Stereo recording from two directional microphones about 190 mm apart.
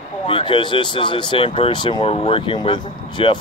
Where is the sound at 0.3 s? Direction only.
25° left (ahead or behind).